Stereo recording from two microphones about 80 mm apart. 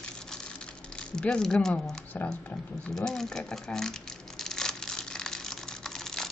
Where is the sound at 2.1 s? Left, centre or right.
Left.